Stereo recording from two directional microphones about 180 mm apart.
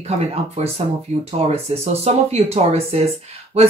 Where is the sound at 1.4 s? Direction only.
35° right (ahead or behind).